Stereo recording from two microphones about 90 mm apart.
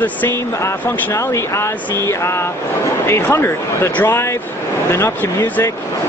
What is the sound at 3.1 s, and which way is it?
Speech, 25° left (ahead or behind).